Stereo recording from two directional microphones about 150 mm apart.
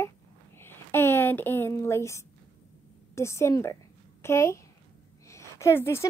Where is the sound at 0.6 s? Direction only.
15° left (ahead or behind).